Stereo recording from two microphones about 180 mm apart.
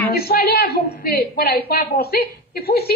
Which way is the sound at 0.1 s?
55° left (ahead or behind).